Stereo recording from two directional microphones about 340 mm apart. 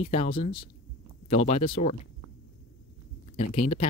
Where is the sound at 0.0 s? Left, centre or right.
Centre.